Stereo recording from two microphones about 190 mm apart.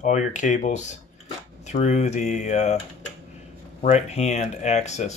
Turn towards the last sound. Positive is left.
turn(degrees=35)  # may be behind; listen again after turning